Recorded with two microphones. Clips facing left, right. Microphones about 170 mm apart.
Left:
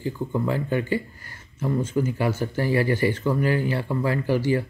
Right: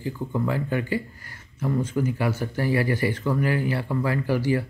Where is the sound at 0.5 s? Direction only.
25° left (ahead or behind).